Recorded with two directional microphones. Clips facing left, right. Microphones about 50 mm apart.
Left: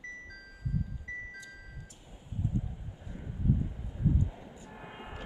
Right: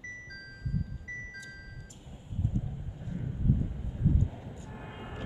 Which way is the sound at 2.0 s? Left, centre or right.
Centre.